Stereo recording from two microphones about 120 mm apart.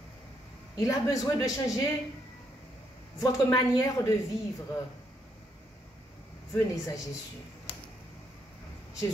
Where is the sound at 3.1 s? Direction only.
30° left (ahead or behind).